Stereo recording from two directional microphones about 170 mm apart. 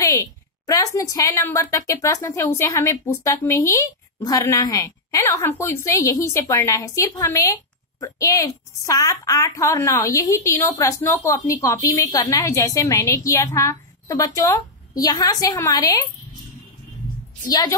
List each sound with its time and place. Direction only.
0.7 s a woman's voice: 20° left (ahead or behind)
17.5 s a woman's voice: 20° left (ahead or behind)